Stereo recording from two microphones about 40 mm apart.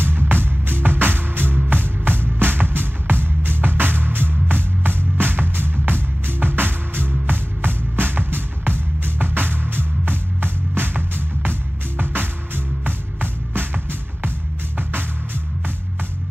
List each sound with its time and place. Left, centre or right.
0.0 s music: right